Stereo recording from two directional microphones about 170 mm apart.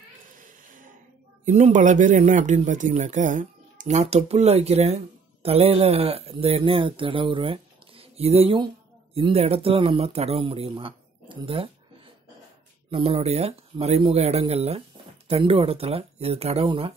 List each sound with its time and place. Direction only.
1.4 s speech: 45° right (ahead or behind)
12.9 s speech: 35° right (ahead or behind)